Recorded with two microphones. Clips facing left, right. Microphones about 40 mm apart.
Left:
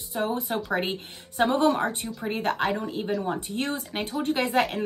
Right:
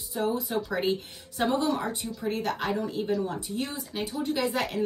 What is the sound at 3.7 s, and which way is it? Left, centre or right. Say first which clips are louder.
Speech: left 3 dB; left.